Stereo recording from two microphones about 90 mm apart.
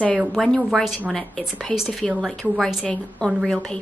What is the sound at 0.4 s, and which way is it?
Speech, 5° left (ahead or behind).